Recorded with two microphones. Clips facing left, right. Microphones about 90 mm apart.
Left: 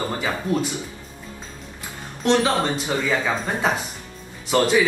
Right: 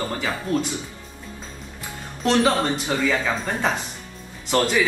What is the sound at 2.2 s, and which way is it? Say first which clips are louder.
Speech: even; 20° left (ahead or behind).